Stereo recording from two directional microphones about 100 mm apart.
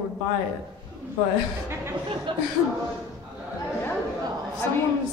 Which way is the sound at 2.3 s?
55° right (ahead or behind).